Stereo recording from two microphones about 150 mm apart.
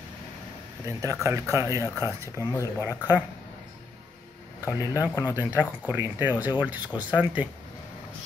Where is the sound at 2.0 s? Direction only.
20° left (ahead or behind).